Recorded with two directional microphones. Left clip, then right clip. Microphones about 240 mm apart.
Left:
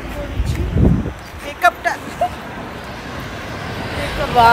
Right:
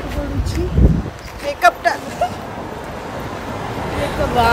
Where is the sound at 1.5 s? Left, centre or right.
Centre.